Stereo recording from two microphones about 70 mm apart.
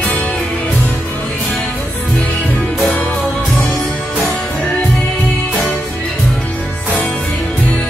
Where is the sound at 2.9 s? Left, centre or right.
Centre.